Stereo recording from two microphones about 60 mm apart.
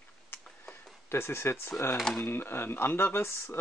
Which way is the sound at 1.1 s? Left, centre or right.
Left.